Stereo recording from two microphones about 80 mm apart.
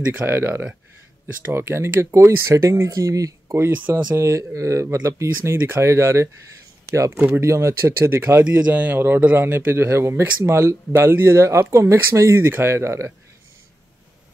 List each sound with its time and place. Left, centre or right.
0.1 s a man's voice: right
3.7 s speech: right
4.2 s a man's voice: right